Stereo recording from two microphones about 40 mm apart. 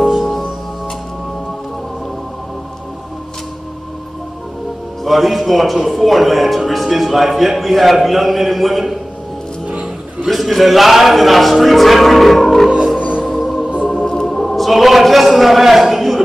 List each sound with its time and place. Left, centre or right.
0.0 s music: centre
5.0 s a man's voice: centre
10.2 s a man's voice: centre
12.6 s music: centre
13.3 s music: centre
14.1 s a sound: centre